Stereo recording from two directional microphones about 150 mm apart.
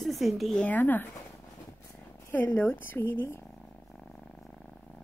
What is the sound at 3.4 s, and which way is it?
Purr, 5° left (ahead or behind).